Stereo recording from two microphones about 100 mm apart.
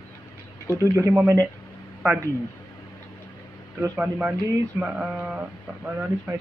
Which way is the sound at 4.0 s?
15° right (ahead or behind).